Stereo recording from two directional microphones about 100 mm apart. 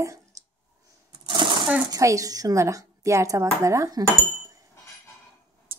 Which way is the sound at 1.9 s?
35° right (ahead or behind).